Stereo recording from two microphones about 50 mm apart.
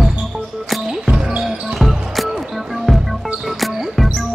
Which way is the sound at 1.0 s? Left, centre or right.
Centre.